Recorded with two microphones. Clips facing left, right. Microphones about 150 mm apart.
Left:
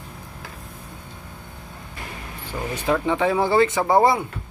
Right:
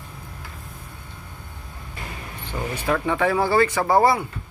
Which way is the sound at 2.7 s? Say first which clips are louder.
Left 2 dB; 20° left (ahead or behind).